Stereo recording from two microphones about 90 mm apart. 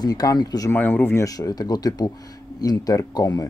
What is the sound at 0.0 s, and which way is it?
Speech, 45° left (ahead or behind).